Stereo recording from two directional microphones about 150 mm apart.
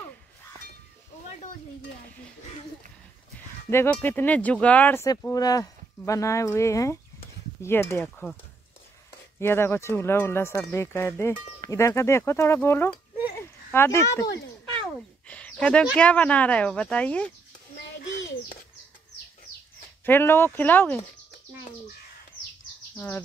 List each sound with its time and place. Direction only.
3.7 s speech: 15° left (ahead or behind)
5.0 s speech: 25° left (ahead or behind)
9.4 s speech: 15° left (ahead or behind)
15.0 s a sound: 10° left (ahead or behind)
16.0 s speech: 10° left (ahead or behind)
20.1 s speech: 15° left (ahead or behind)
22.9 s speech: 15° left (ahead or behind)